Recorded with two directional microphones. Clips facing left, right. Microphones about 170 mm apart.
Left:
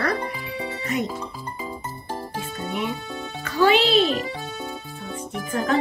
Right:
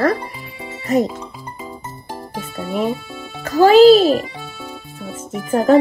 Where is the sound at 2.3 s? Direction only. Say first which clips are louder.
Right 8 dB; 40° right (ahead or behind).